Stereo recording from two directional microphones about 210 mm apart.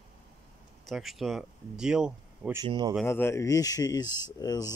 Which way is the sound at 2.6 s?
20° right (ahead or behind).